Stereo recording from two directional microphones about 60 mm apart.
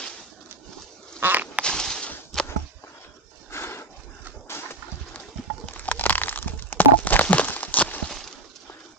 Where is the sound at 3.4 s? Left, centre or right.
Left.